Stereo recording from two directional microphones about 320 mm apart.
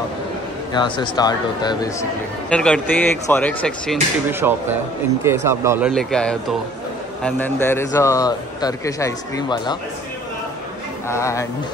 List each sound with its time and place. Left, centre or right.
0.7 s a man's voice: centre
11.1 s a man's voice: centre